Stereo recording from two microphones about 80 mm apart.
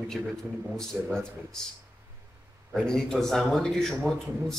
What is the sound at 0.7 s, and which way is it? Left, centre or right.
Speech, centre.